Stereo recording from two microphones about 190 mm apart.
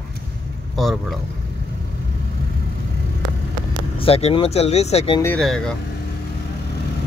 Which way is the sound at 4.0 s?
30° left (ahead or behind).